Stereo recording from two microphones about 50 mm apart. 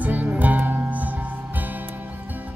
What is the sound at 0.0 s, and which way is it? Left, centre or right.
Music, right.